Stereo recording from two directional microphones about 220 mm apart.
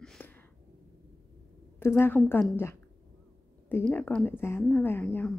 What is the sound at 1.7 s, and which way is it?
Speech, 10° left (ahead or behind).